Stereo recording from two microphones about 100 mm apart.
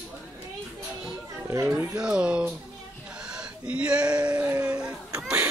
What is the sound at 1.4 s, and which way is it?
Chatter, 25° right (ahead or behind).